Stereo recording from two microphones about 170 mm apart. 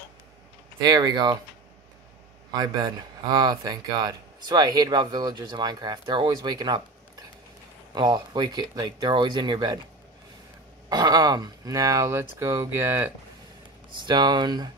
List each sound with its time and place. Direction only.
0.7 s speech: 20° right (ahead or behind)
2.5 s speech: 25° right (ahead or behind)
10.9 s speech: 25° right (ahead or behind)
14.0 s speech: 25° right (ahead or behind)